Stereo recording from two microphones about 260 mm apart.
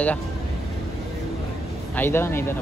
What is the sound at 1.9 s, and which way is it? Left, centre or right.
Speech, centre.